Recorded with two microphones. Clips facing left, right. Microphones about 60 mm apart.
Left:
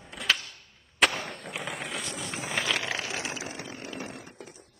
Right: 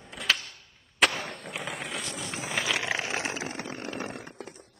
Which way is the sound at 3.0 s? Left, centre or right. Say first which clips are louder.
Right 3 dB; right.